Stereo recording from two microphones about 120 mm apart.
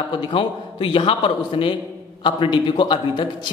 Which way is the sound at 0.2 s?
45° left (ahead or behind).